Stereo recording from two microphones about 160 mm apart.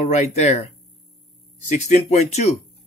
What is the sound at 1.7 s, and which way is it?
Speech, 45° left (ahead or behind).